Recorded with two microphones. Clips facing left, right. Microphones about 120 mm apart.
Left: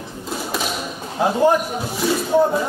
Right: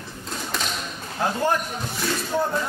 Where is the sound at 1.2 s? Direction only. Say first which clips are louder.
Left 7 dB; 15° left (ahead or behind).